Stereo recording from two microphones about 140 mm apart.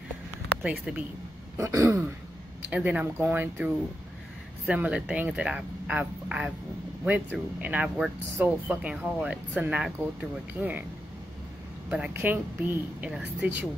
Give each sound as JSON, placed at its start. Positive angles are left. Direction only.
{"t": 0.7, "sound": "speech", "side_deg": -10}
{"t": 1.6, "sound": "throat clearing", "side_deg": -20}
{"t": 2.7, "sound": "speech", "side_deg": -10}
{"t": 11.9, "sound": "speech", "side_deg": -10}